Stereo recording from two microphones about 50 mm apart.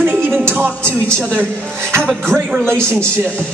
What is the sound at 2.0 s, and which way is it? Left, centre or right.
Speech, centre.